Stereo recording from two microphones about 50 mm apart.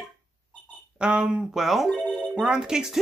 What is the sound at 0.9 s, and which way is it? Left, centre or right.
Speech, centre.